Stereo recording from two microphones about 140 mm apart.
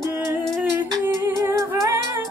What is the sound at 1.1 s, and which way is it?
Humming, 20° right (ahead or behind).